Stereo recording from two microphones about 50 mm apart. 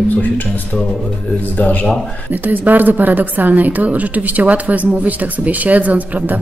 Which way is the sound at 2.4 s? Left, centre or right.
Right.